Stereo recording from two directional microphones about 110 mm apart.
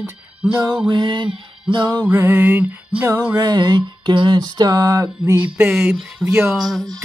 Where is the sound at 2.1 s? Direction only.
15° right (ahead or behind).